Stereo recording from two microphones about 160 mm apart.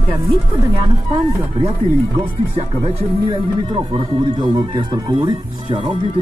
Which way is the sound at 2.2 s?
35° right (ahead or behind).